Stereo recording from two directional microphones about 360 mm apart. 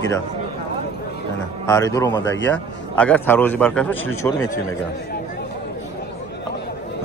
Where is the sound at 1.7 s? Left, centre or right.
Centre.